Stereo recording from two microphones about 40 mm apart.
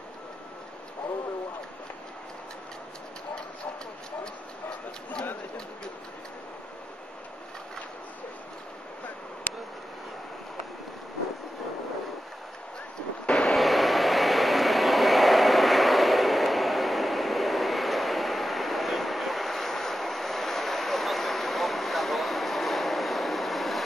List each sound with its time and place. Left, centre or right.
4.2 s a sound: centre
13.3 s vehicle: centre
13.6 s vehicle: centre